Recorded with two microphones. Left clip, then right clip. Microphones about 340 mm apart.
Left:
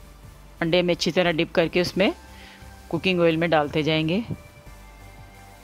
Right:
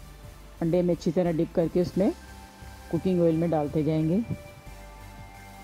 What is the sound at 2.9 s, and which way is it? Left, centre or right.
Speech, left.